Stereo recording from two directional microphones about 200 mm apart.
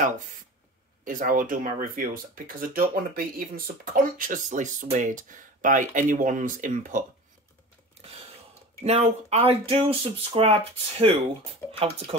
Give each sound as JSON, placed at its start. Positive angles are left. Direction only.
{"t": 1.0, "sound": "speech", "side_deg": -40}
{"t": 8.8, "sound": "speech", "side_deg": -30}